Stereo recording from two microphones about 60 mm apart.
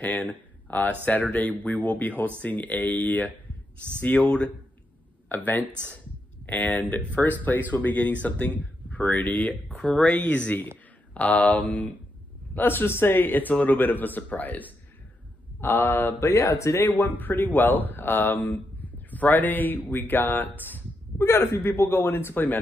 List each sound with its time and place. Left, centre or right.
0.0 s speech: left
5.3 s speech: left
5.6 s speech: right
6.4 s speech: left
9.7 s speech: centre
12.5 s speech: left
15.6 s speech: left
17.2 s speech: left
21.2 s speech: left